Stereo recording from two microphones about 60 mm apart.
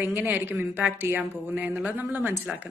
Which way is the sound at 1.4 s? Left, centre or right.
Right.